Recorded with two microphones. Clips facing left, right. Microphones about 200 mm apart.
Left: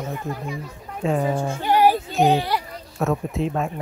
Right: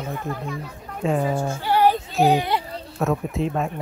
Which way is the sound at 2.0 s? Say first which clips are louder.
Even; centre (ahead or behind).